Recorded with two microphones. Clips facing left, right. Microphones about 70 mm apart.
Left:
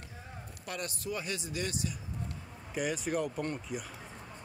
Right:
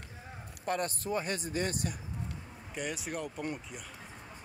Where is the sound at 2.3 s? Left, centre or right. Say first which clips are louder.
Even; centre.